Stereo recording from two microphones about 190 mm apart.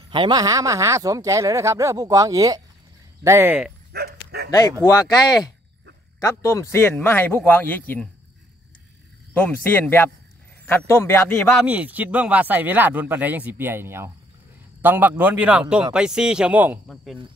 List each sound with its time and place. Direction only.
0.1 s speech: 25° right (ahead or behind)
3.9 s dog: 55° right (ahead or behind)
4.5 s speech: 20° left (ahead or behind)
6.2 s speech: 15° left (ahead or behind)
9.3 s speech: 10° left (ahead or behind)
11.6 s speech: 10° right (ahead or behind)